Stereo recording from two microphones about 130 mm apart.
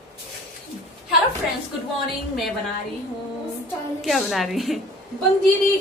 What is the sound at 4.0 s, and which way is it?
Speech, centre (ahead or behind).